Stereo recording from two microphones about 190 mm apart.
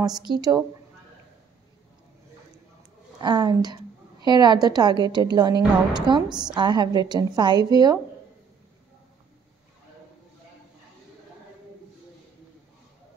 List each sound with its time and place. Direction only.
0.3 s a woman's voice: 20° right (ahead or behind)
3.2 s a woman's voice: 20° right (ahead or behind)